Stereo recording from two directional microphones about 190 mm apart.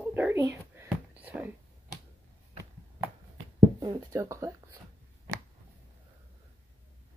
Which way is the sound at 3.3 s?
20° right (ahead or behind).